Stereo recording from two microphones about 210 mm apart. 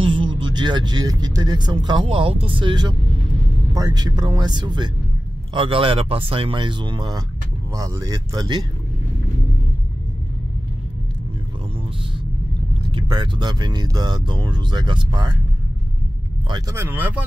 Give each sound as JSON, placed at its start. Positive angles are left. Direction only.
{"t": 0.0, "sound": "speech", "side_deg": -25}
{"t": 12.9, "sound": "speech", "side_deg": -20}
{"t": 16.4, "sound": "speech", "side_deg": -20}